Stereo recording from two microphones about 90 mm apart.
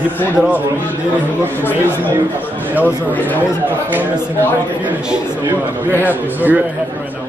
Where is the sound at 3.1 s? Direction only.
20° left (ahead or behind).